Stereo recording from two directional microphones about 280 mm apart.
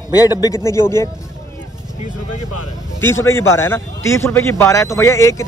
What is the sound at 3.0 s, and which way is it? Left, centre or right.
A man's voice, centre.